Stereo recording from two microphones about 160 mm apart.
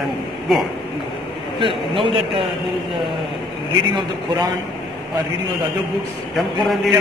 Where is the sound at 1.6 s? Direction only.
30° right (ahead or behind).